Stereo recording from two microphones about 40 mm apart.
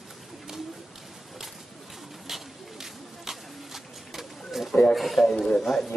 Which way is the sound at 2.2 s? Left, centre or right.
Centre.